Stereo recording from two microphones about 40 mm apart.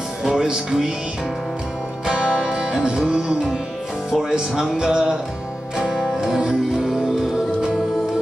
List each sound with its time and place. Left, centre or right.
0.2 s music: centre
2.0 s music: centre